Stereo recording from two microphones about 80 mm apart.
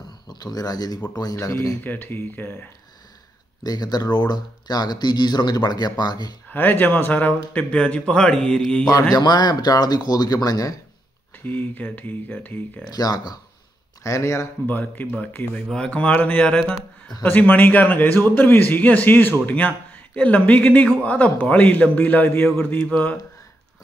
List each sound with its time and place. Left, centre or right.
0.3 s speech: left
1.8 s a man's voice: left
3.6 s speech: left
6.5 s a man's voice: left
9.1 s speech: left
11.4 s a man's voice: left
12.9 s speech: left
14.0 s speech: left
14.7 s a man's voice: left
15.1 s a man's voice: centre